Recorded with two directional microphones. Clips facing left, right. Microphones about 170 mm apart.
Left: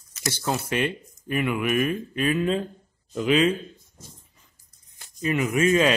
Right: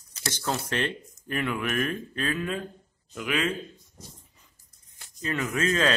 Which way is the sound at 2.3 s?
25° left (ahead or behind).